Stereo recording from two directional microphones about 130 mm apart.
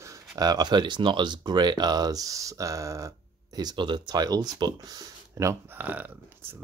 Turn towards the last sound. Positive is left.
turn(degrees=-15)  # may be behind; listen again after turning